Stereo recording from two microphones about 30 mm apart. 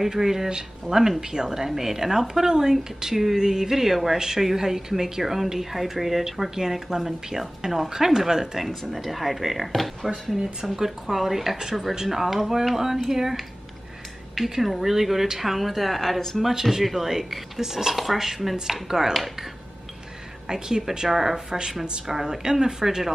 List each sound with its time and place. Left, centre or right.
0.0 s speech: centre
7.0 s speech: centre
7.9 s speech: centre
8.6 s speech: centre
10.8 s speech: centre
14.6 s speech: centre
20.4 s speech: right
22.0 s speech: centre
22.8 s speech: centre